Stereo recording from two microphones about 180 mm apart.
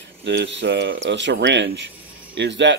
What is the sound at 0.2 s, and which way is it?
Speech, 90° right.